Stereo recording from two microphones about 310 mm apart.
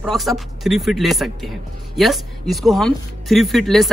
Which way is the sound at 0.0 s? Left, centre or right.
Centre.